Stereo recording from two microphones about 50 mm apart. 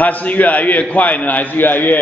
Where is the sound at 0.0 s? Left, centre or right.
Left.